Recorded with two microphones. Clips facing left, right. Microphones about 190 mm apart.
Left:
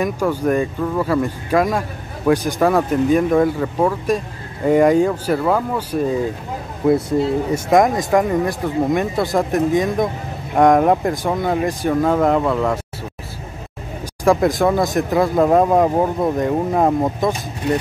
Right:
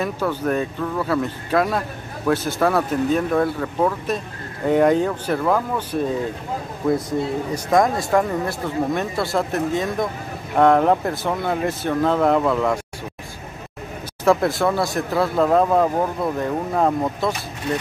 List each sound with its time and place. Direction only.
0.0 s speech: 10° left (ahead or behind)
14.2 s speech: 15° left (ahead or behind)